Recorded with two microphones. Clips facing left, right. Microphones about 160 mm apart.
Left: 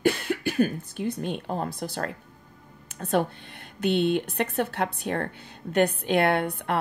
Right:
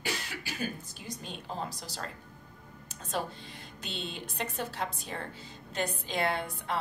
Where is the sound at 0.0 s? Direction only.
55° left (ahead or behind).